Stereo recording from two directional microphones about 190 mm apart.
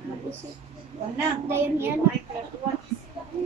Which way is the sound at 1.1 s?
10° right (ahead or behind).